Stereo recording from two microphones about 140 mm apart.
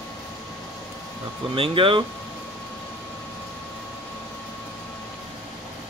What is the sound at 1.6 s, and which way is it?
Speech, 40° right (ahead or behind).